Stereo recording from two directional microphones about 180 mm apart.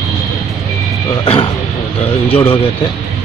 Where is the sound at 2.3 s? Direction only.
30° left (ahead or behind).